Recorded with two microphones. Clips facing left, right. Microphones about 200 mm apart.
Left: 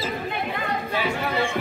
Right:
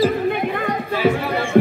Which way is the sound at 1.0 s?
55° right (ahead or behind).